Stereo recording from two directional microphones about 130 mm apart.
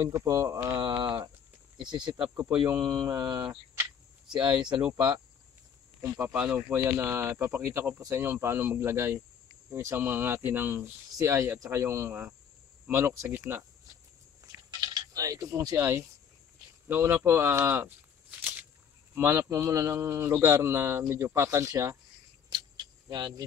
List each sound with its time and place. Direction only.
0.0 s a man's voice: 20° right (ahead or behind)
0.8 s speech: 35° right (ahead or behind)
3.1 s speech: 25° right (ahead or behind)
4.3 s speech: 35° right (ahead or behind)
6.0 s a man's voice: 15° right (ahead or behind)
14.8 s a man's voice: 30° right (ahead or behind)
19.1 s a man's voice: 20° right (ahead or behind)
22.5 s cricket: 35° right (ahead or behind)